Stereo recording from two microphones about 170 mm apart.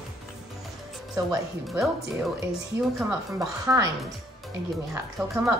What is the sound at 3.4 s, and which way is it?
Speech, 20° right (ahead or behind).